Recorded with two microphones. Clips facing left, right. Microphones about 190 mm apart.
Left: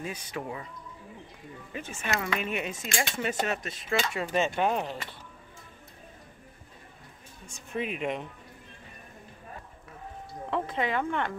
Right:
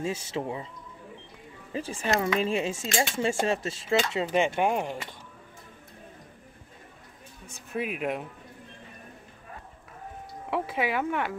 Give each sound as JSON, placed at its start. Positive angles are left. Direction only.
{"t": 0.0, "sound": "speech", "side_deg": -25}
{"t": 1.7, "sound": "speech", "side_deg": -30}
{"t": 7.7, "sound": "speech", "side_deg": -5}
{"t": 10.5, "sound": "speech", "side_deg": -10}